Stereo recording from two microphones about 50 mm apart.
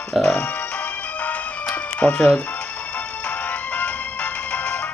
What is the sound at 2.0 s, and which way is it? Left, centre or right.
Speech, left.